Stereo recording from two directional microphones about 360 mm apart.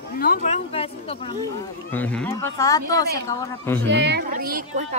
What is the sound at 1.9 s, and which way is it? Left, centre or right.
A woman's voice, centre.